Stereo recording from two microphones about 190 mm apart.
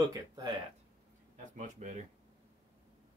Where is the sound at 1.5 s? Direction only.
40° right (ahead or behind).